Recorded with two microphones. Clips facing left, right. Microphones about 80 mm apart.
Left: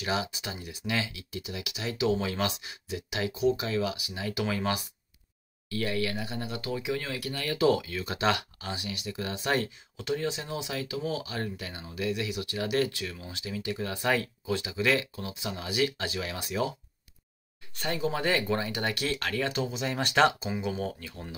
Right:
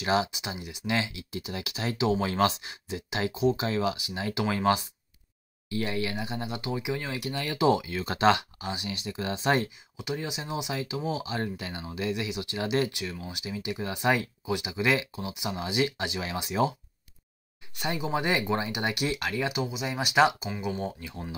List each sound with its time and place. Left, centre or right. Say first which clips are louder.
0.0 s speech: right 5 dB; right
0.3 s speech: right 2 dB; centre
5.7 s speech: even; right
8.0 s speech: right 5 dB; right
8.4 s speech: right 2 dB; centre
9.9 s speech: left 3 dB; centre
17.7 s speech: right 1 dB; centre
21.0 s speech: right 3 dB; right